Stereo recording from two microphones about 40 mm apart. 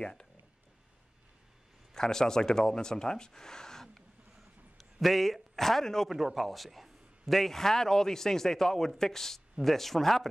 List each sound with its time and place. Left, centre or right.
0.0 s speech: left
2.0 s speech: centre
5.0 s a man's voice: centre
6.0 s a man's voice: centre